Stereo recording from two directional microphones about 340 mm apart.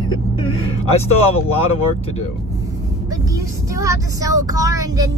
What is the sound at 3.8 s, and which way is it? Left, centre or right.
A woman's voice, centre.